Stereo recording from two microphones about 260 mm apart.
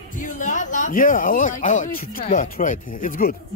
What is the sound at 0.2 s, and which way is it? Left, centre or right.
Speech, left.